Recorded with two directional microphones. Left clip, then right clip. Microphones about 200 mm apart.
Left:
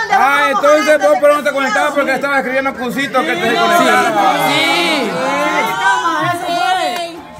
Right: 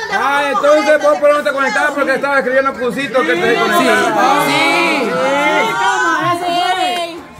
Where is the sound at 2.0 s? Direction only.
65° left (ahead or behind).